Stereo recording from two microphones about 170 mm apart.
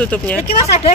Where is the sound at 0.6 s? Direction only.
40° left (ahead or behind).